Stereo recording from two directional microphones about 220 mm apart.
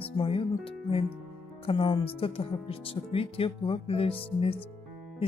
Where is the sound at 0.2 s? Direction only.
25° left (ahead or behind).